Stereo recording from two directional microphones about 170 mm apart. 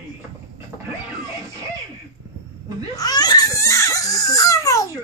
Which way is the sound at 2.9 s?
25° left (ahead or behind).